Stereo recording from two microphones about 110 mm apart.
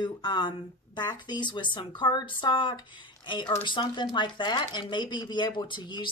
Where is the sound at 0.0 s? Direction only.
40° left (ahead or behind).